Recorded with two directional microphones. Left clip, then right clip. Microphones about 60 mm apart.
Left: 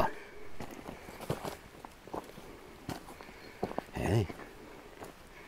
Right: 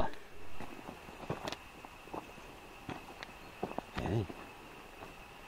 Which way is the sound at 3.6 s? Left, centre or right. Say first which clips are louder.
Left 3 dB; centre.